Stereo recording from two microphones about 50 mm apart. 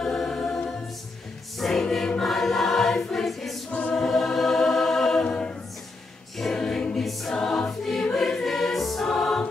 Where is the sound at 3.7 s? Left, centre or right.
Left.